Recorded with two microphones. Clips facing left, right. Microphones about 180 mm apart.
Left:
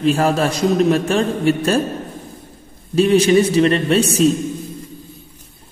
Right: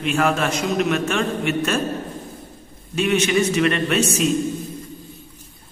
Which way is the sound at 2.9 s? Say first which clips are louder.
Left 7 dB; 35° left (ahead or behind).